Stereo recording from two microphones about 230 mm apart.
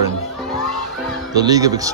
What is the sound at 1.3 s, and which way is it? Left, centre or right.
Speech, centre.